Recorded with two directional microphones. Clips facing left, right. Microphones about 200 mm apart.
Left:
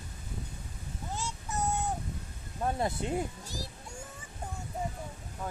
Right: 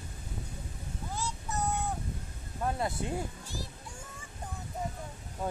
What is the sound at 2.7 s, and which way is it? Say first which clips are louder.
Speech: left 1 dB; 25° left (ahead or behind).